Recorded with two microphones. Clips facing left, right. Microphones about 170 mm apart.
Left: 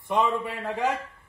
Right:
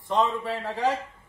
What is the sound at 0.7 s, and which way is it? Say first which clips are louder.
Speech: even; 55° left (ahead or behind).